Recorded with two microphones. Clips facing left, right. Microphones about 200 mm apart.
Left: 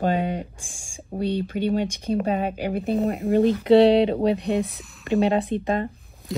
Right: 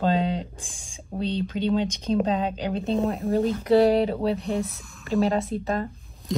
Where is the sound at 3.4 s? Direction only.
65° left (ahead or behind).